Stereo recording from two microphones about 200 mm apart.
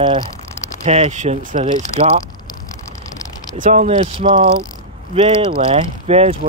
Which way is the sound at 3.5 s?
40° right (ahead or behind).